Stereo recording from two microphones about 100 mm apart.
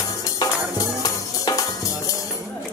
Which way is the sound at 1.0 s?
35° left (ahead or behind).